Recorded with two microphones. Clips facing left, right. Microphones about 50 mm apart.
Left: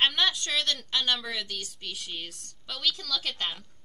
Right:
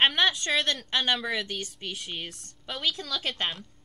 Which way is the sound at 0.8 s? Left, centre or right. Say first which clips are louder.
Right 2 dB; right.